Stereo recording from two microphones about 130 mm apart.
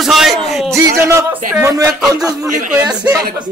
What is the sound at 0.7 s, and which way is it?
Speech, 25° right (ahead or behind).